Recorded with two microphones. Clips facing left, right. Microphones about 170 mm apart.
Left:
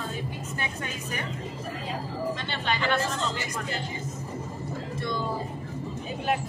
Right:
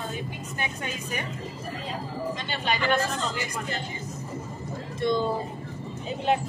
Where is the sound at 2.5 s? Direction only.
15° right (ahead or behind).